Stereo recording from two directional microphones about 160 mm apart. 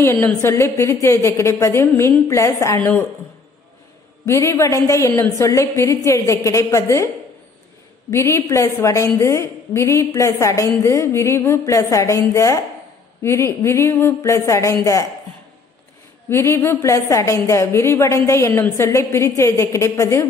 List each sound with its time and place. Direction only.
0.0 s a woman's voice: 15° left (ahead or behind)
4.3 s a woman's voice: 20° left (ahead or behind)
8.1 s a woman's voice: 15° left (ahead or behind)
16.3 s a woman's voice: 15° left (ahead or behind)